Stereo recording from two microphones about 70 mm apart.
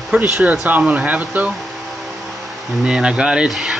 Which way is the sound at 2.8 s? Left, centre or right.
Centre.